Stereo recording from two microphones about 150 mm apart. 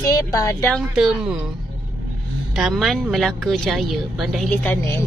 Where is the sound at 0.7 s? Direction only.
Centre (ahead or behind).